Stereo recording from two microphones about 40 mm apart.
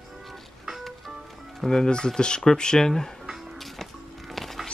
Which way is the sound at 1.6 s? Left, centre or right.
Centre.